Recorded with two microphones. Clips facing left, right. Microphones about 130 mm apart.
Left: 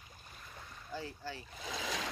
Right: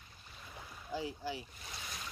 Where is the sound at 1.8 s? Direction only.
90° left.